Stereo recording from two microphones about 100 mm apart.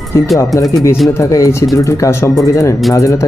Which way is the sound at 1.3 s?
30° left (ahead or behind).